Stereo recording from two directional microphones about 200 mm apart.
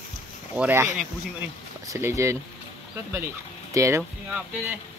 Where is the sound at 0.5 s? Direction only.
10° right (ahead or behind).